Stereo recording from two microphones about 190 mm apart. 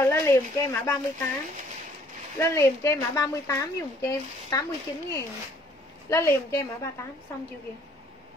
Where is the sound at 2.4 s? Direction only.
15° left (ahead or behind).